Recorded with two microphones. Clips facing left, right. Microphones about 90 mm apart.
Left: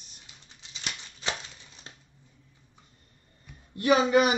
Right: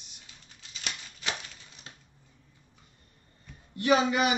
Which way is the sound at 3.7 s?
30° left (ahead or behind).